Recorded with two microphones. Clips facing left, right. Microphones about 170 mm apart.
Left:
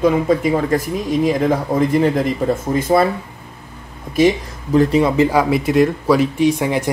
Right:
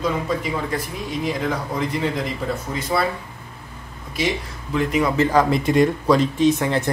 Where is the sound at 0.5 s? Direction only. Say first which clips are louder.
Left 8 dB; 45° left (ahead or behind).